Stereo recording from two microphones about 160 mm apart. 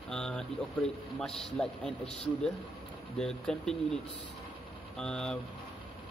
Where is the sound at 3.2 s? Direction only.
5° left (ahead or behind).